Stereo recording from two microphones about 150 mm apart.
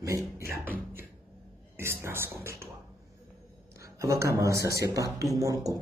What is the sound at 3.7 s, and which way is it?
Speech, 20° right (ahead or behind).